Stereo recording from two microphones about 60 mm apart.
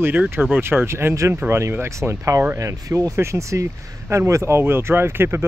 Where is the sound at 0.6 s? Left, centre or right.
Right.